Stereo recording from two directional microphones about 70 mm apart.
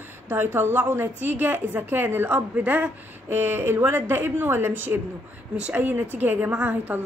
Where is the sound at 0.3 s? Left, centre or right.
Right.